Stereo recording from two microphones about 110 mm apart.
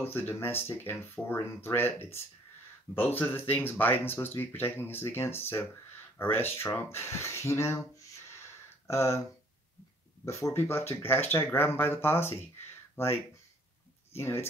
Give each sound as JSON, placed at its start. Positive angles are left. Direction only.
{"t": 0.0, "sound": "speech", "side_deg": 20}
{"t": 8.3, "sound": "a sound", "side_deg": 25}
{"t": 10.2, "sound": "speech", "side_deg": 25}